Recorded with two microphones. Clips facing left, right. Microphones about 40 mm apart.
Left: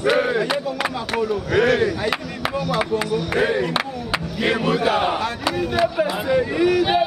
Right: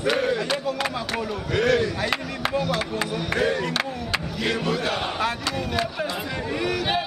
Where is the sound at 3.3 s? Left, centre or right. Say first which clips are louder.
Left 3 dB; centre.